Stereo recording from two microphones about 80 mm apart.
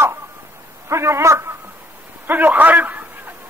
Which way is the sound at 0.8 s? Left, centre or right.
Right.